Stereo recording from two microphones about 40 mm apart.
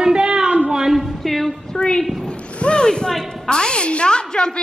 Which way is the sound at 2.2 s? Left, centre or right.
Left.